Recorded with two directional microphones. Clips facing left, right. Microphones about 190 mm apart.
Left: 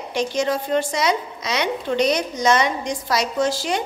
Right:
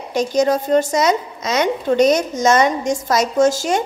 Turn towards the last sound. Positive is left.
turn(degrees=-45)  # may be behind; listen again after turning